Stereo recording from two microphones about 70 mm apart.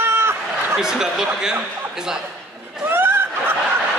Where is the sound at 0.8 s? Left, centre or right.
Centre.